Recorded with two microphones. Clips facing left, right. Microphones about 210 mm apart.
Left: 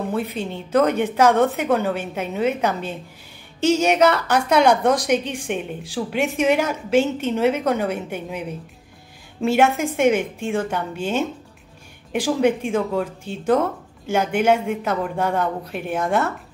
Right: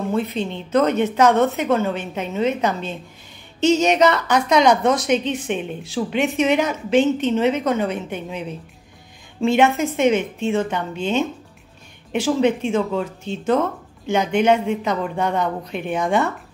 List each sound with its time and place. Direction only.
0.1 s a woman's voice: 10° left (ahead or behind)